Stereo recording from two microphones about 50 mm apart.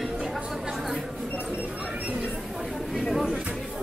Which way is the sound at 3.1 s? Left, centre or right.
Centre.